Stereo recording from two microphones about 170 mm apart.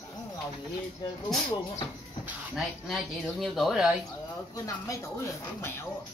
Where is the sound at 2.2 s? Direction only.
Centre (ahead or behind).